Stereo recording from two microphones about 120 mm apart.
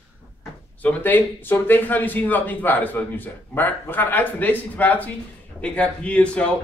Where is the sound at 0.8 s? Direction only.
15° left (ahead or behind).